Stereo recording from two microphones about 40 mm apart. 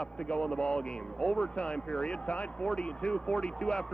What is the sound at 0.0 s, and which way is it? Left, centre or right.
A man's voice, left.